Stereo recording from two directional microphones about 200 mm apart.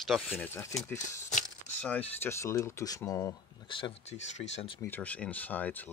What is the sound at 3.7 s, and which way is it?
Speech, 25° left (ahead or behind).